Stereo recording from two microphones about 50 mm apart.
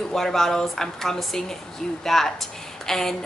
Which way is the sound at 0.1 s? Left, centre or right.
Centre.